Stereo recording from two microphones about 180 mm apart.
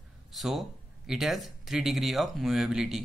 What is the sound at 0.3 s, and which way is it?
Speech, centre (ahead or behind).